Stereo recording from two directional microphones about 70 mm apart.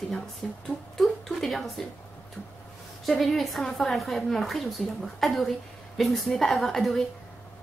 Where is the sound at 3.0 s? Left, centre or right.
Centre.